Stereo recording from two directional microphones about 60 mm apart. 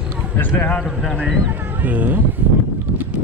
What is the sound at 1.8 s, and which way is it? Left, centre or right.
Speech, right.